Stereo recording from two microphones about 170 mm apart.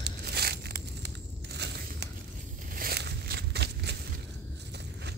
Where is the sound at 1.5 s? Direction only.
80° right.